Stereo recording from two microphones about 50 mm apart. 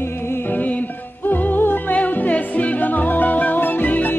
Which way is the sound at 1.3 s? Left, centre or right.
Left.